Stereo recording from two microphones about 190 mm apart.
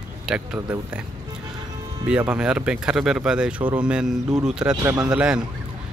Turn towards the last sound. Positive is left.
turn(degrees=-5)  # may be behind; listen again after turning